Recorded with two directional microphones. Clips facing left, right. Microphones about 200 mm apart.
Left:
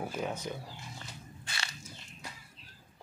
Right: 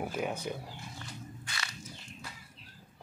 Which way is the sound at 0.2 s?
10° right (ahead or behind).